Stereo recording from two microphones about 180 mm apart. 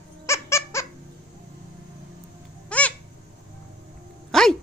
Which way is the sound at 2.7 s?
5° left (ahead or behind).